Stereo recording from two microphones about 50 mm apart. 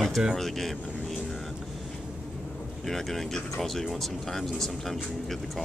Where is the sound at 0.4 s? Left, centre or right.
Centre.